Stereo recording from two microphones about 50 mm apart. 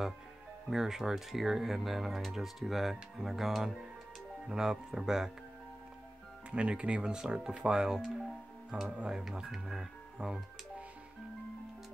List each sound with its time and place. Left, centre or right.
0.7 s speech: centre
6.5 s speech: right